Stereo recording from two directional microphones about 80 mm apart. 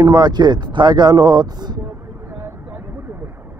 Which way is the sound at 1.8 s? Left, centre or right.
Right.